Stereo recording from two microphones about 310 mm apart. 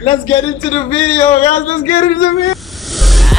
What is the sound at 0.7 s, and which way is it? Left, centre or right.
Speech, centre.